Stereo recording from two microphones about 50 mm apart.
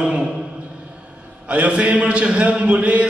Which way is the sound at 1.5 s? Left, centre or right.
Right.